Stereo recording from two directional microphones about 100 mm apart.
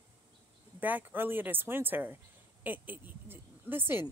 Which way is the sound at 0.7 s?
20° right (ahead or behind).